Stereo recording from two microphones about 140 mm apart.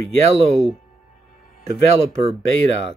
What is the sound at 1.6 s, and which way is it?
Speech, 50° right (ahead or behind).